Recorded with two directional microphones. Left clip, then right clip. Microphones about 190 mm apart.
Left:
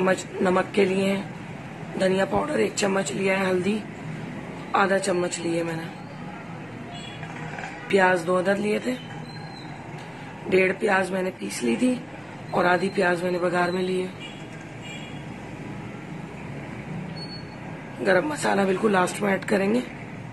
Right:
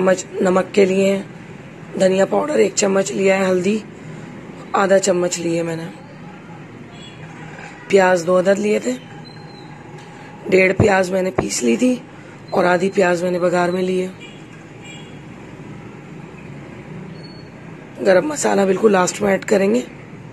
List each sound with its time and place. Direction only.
0.0 s speech: 30° right (ahead or behind)
7.9 s speech: 30° right (ahead or behind)
10.5 s speech: 30° right (ahead or behind)
18.0 s speech: 30° right (ahead or behind)